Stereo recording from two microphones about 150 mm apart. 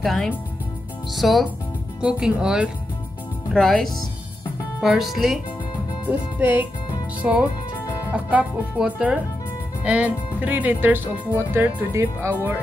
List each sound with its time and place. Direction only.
0.0 s speech: centre (ahead or behind)
6.0 s speech: 15° right (ahead or behind)
7.8 s music: 20° left (ahead or behind)
8.1 s speech: 10° right (ahead or behind)